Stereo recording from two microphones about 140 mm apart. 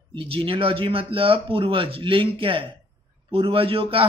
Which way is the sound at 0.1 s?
40° right (ahead or behind).